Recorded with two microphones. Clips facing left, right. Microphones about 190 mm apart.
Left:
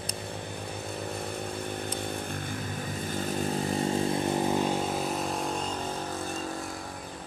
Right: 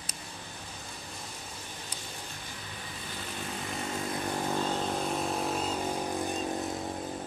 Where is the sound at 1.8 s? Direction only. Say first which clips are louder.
Left 11 dB; 60° left (ahead or behind).